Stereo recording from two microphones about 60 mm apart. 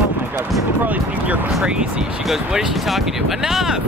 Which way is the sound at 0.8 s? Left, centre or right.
Right.